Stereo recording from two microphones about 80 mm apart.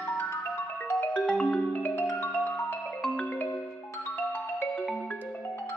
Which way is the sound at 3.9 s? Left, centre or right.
Left.